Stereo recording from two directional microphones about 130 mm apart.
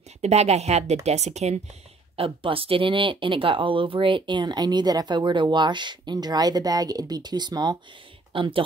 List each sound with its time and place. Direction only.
0.2 s speech: 55° right (ahead or behind)
2.1 s speech: 45° right (ahead or behind)